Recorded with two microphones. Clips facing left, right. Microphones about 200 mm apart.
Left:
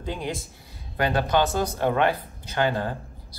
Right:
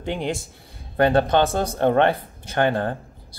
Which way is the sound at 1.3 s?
55° right (ahead or behind).